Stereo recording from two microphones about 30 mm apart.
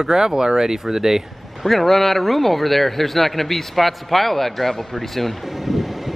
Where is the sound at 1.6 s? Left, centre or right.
Centre.